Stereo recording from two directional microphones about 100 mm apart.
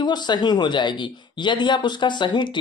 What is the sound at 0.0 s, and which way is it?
Speech, 45° left (ahead or behind).